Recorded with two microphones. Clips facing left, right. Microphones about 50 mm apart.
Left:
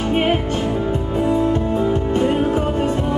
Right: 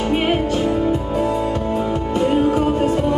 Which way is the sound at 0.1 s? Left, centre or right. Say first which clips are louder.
Left 1 dB; left.